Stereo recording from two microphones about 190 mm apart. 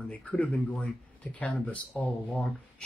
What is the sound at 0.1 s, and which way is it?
Speech, 10° left (ahead or behind).